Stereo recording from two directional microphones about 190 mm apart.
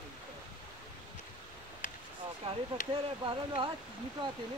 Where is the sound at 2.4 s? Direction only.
30° right (ahead or behind).